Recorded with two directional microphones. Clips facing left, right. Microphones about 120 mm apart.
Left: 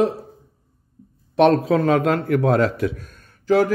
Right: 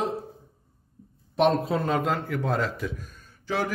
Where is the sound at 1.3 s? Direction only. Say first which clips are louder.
Left 7 dB; 75° left (ahead or behind).